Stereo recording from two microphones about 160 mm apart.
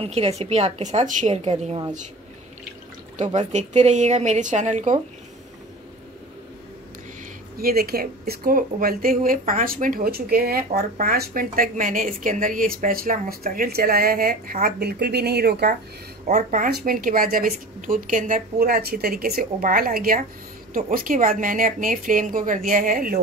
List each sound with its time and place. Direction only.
0.0 s a woman's voice: 40° right (ahead or behind)
3.3 s a woman's voice: 45° right (ahead or behind)
7.5 s a woman's voice: 70° right (ahead or behind); by 15.7 s 90° right
16.3 s a woman's voice: 50° right (ahead or behind)